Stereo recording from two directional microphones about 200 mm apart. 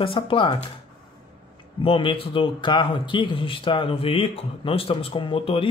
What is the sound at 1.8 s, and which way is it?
A man's voice, 25° left (ahead or behind).